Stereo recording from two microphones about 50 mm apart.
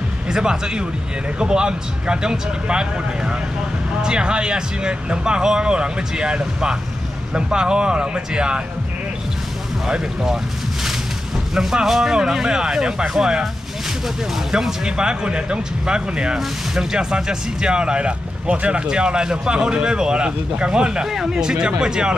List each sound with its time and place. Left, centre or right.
0.3 s speech: centre
9.8 s speech: centre